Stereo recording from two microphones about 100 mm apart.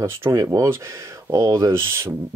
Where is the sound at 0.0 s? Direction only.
25° right (ahead or behind).